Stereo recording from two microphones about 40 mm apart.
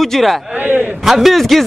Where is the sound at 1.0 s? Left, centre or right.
Centre.